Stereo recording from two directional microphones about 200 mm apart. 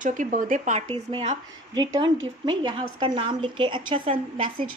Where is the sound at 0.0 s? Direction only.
40° right (ahead or behind).